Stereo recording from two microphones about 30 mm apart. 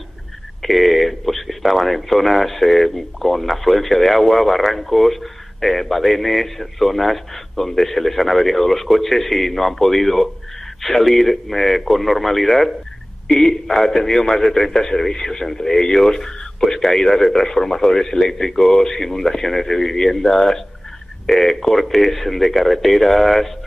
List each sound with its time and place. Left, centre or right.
0.6 s speech: centre
13.3 s speech: centre